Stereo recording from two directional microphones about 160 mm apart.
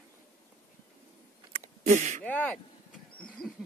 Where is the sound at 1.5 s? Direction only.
45° right (ahead or behind).